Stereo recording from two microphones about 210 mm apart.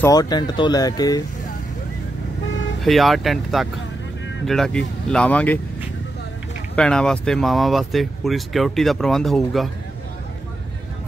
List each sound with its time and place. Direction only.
0.0 s speech: 15° left (ahead or behind)
2.8 s speech: centre (ahead or behind)
6.7 s speech: 5° left (ahead or behind)